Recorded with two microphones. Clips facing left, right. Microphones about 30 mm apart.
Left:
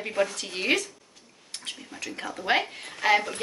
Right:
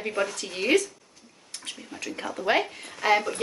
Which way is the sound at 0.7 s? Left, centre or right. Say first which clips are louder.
Right 3 dB; left.